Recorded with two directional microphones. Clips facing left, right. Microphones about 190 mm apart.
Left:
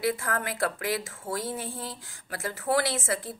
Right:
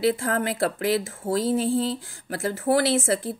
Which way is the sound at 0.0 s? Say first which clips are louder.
Right 6 dB; 25° right (ahead or behind).